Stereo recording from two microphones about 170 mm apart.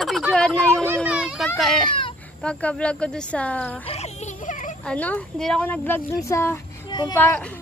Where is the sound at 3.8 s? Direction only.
35° left (ahead or behind).